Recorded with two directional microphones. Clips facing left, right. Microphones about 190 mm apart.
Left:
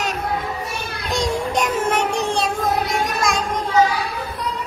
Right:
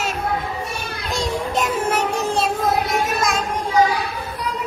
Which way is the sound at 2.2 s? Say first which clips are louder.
Right 1 dB; centre (ahead or behind).